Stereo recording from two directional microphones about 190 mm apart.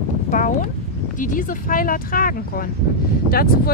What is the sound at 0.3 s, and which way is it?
Speech, 40° left (ahead or behind).